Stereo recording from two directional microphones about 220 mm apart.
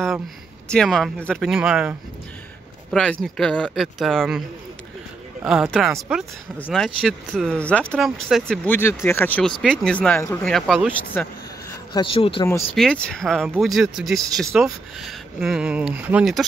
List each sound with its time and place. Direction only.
0.7 s speech: 5° left (ahead or behind)
11.9 s speech: 25° left (ahead or behind)
12.7 s speech: 5° left (ahead or behind)